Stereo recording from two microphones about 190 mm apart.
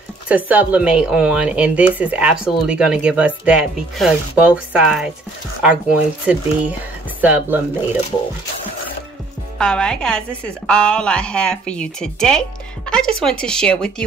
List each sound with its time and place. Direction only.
0.3 s a woman's voice: 10° right (ahead or behind)
9.6 s a woman's voice: 5° left (ahead or behind)